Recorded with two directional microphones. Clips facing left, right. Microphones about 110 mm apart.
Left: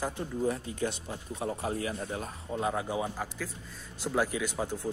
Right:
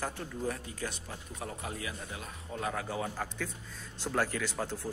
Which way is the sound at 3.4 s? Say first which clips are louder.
Even; 5° left (ahead or behind).